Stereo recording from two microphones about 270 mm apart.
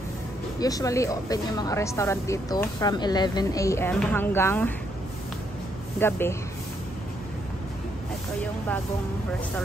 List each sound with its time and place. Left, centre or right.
0.6 s speech: centre
5.9 s speech: centre